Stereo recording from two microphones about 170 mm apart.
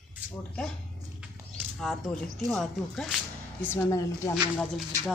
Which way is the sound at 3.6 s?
15° left (ahead or behind).